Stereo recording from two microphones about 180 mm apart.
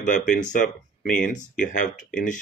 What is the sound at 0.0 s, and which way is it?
Speech, 45° left (ahead or behind).